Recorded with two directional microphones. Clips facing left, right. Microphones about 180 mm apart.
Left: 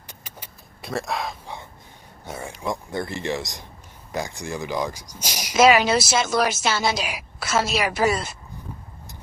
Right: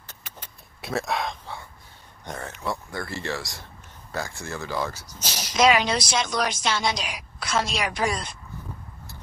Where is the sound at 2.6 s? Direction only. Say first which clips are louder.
Left 4 dB; 20° left (ahead or behind).